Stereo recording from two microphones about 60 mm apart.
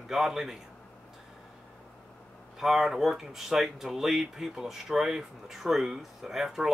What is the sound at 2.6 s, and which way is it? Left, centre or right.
Speech, centre.